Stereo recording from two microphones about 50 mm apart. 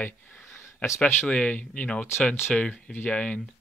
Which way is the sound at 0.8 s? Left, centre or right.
Left.